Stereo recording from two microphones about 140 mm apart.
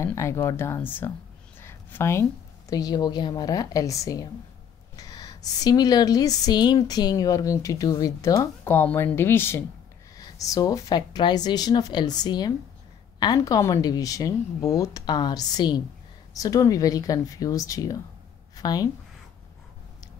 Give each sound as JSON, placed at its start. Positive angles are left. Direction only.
{"t": 0.0, "sound": "speech", "side_deg": 20}
{"t": 1.6, "sound": "a sound", "side_deg": 15}
{"t": 2.7, "sound": "a woman's voice", "side_deg": 30}